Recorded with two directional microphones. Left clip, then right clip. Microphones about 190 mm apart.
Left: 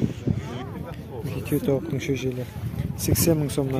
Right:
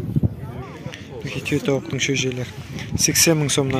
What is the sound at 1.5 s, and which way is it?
Speech, 5° left (ahead or behind).